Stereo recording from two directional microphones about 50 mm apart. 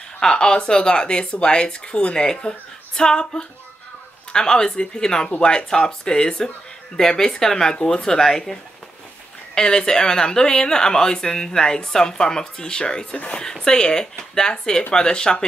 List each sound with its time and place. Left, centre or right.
0.2 s speech: centre
9.6 s speech: centre